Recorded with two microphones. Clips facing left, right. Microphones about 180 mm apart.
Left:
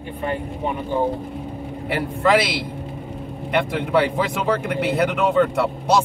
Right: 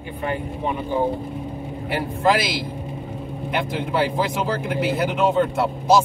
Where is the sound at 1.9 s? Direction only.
65° left (ahead or behind).